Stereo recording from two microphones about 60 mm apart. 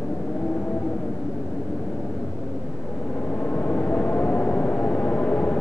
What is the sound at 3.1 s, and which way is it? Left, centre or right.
Vehicle, left.